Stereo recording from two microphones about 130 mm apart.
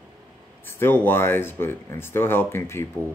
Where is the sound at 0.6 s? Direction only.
15° left (ahead or behind).